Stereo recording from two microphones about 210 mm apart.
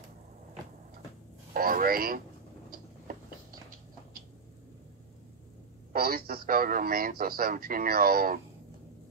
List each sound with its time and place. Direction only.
1.5 s speech: 45° right (ahead or behind)
5.9 s a man's voice: 45° right (ahead or behind)